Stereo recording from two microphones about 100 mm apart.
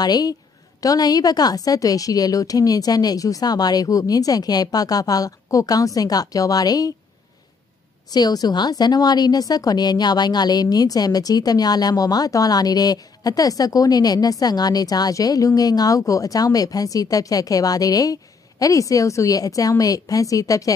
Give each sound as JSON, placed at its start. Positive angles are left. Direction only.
{"t": 0.0, "sound": "a woman's voice", "side_deg": 40}
{"t": 8.1, "sound": "a woman's voice", "side_deg": 40}